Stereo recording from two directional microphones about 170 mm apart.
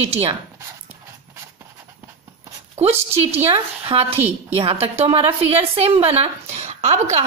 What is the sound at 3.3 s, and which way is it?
A woman's voice, 35° right (ahead or behind).